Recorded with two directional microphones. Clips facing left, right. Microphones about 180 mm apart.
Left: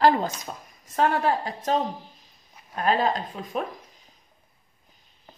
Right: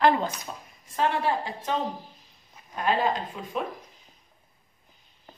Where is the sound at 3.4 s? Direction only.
40° left (ahead or behind).